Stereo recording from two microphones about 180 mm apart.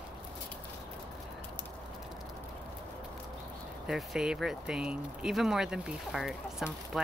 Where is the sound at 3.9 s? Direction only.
5° right (ahead or behind).